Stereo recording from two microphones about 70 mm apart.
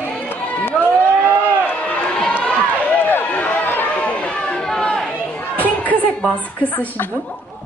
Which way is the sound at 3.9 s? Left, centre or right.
Centre.